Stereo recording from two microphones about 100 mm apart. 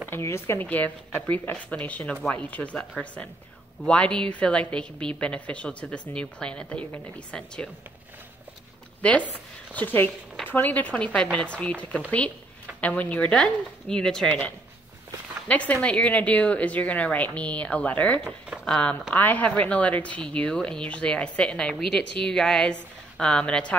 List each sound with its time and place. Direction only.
0.1 s speech: 25° left (ahead or behind)
0.6 s a woman's voice: 15° left (ahead or behind)
9.0 s a woman's voice: 15° left (ahead or behind)
15.4 s a woman's voice: 15° left (ahead or behind)